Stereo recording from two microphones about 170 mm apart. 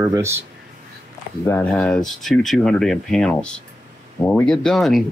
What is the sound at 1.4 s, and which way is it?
Speech, 15° left (ahead or behind).